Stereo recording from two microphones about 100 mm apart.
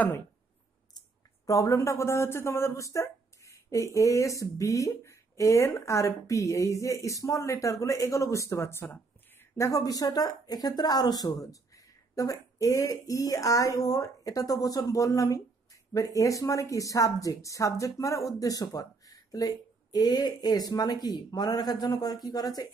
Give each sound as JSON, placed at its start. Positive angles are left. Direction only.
{"t": 1.4, "sound": "speech", "side_deg": 35}